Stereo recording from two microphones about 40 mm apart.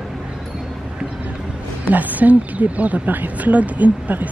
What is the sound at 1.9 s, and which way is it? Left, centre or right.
Speech, right.